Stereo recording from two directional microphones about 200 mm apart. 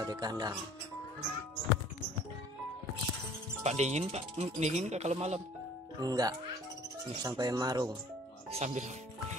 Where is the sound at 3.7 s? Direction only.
35° right (ahead or behind).